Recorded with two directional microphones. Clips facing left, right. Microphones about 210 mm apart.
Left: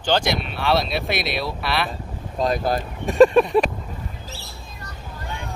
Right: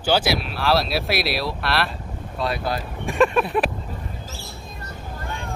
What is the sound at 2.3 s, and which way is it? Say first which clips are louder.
Speech: left 4 dB; 45° left (ahead or behind).